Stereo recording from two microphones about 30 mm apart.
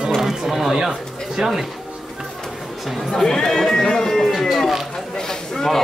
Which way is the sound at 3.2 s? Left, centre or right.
Centre.